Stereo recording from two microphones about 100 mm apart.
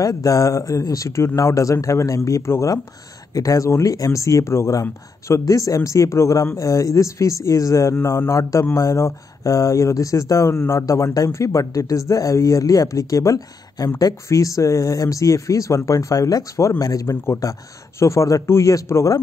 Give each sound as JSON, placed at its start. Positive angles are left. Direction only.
{"t": 0.0, "sound": "a man's voice", "side_deg": 35}